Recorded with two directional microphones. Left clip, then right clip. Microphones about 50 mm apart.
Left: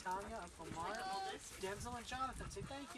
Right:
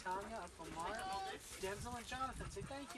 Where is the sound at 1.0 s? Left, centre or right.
Centre.